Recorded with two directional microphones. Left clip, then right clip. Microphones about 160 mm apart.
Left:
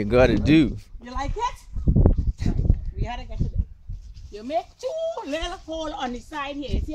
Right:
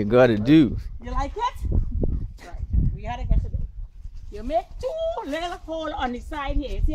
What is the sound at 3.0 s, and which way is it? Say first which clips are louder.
Speech: left 1 dB; 10° right (ahead or behind).